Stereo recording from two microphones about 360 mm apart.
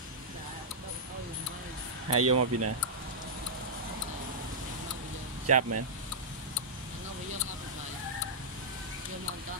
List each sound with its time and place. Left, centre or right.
2.0 s speech: right
5.6 s speech: right